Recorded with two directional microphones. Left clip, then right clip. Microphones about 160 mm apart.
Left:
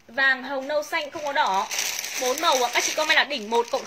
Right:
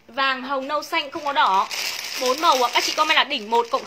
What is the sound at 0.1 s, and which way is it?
A woman's voice, 15° right (ahead or behind).